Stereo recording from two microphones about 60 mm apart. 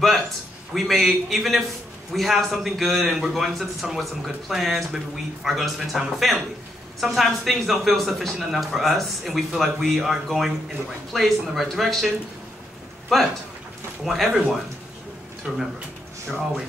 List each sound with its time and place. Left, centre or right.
0.7 s a man's voice: centre
13.1 s a man's voice: centre
15.4 s a man's voice: centre